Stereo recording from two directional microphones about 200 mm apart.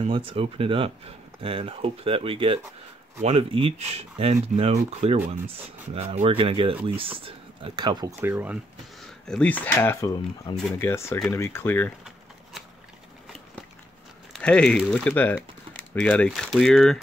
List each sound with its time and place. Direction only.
0.0 s speech: 25° right (ahead or behind)
8.2 s speech: 10° right (ahead or behind)
9.0 s speech: 5° left (ahead or behind)
14.3 s speech: 5° left (ahead or behind)